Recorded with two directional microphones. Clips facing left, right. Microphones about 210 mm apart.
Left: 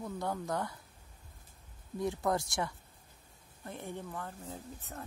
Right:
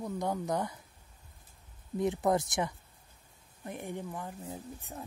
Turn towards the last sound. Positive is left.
turn(degrees=-15)  # may be behind; listen again after turning